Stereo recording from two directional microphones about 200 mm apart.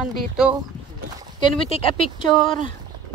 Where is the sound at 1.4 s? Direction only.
25° left (ahead or behind).